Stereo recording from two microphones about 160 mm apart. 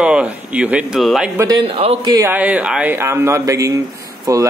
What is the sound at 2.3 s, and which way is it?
Speech, 10° right (ahead or behind).